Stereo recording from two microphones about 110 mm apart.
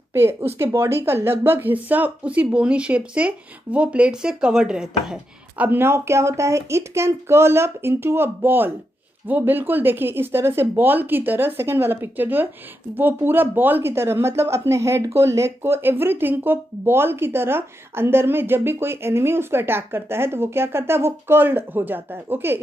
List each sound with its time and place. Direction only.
0.1 s speech: 20° right (ahead or behind); by 5.7 s 5° right (ahead or behind)
5.7 s speech: 20° right (ahead or behind)